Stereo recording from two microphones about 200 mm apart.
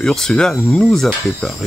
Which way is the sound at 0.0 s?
Centre (ahead or behind).